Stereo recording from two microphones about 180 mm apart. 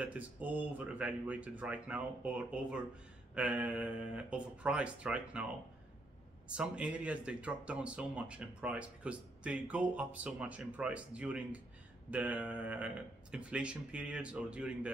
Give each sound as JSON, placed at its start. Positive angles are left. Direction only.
{"t": 0.0, "sound": "speech", "side_deg": -10}
{"t": 6.5, "sound": "speech", "side_deg": -5}